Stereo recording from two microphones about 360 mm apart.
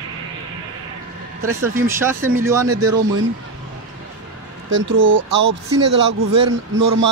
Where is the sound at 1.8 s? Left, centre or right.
Centre.